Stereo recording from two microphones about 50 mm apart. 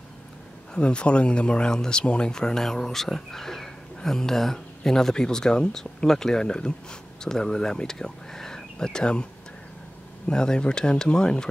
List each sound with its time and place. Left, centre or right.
0.7 s speech: left